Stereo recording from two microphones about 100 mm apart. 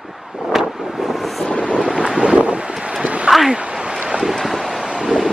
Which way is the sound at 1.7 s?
5° right (ahead or behind).